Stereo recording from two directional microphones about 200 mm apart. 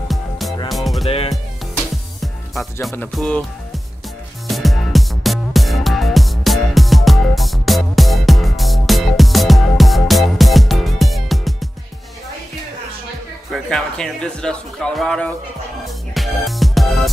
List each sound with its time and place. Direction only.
0.1 s music: centre (ahead or behind)
1.0 s music: 30° left (ahead or behind)
2.5 s speech: centre (ahead or behind)
4.5 s music: centre (ahead or behind)
13.5 s speech: 5° left (ahead or behind)
15.8 s music: centre (ahead or behind)